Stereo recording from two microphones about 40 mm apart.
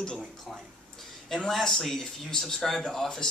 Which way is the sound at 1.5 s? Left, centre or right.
Centre.